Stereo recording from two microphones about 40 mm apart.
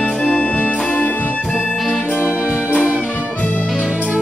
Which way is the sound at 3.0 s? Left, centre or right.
Left.